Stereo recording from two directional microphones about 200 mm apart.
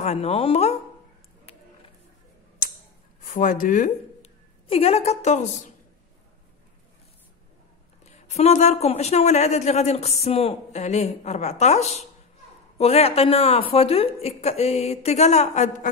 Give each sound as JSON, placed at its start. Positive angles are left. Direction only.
{"t": 0.0, "sound": "speech", "side_deg": 30}
{"t": 3.3, "sound": "speech", "side_deg": 40}
{"t": 4.6, "sound": "speech", "side_deg": 30}
{"t": 8.0, "sound": "speech", "side_deg": 35}